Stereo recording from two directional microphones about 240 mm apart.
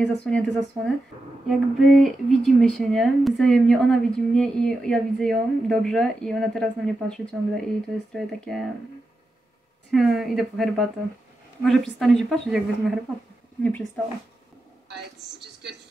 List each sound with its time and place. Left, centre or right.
0.0 s speech: centre
9.8 s speech: centre